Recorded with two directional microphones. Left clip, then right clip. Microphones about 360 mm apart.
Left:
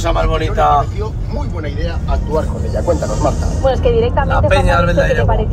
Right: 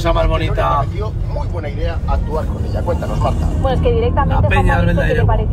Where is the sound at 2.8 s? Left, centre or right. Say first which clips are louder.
Left 4 dB; left.